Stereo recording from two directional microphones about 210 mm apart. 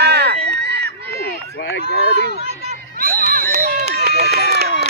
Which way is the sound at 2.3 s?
30° right (ahead or behind).